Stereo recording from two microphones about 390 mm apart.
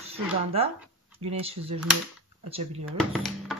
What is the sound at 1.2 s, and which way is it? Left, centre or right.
Speech, centre.